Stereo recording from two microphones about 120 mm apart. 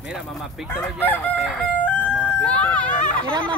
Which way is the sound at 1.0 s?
15° left (ahead or behind).